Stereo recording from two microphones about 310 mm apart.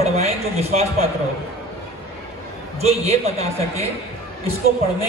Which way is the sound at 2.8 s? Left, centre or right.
Centre.